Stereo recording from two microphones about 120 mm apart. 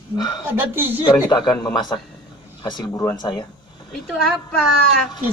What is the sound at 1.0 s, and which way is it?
Speech, 35° left (ahead or behind).